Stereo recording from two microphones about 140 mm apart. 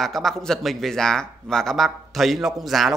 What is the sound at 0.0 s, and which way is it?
A man's voice, centre (ahead or behind).